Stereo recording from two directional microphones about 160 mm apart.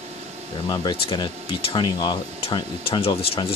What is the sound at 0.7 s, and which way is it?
Speech, 30° left (ahead or behind).